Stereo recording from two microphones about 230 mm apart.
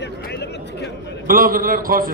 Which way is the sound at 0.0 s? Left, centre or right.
Left.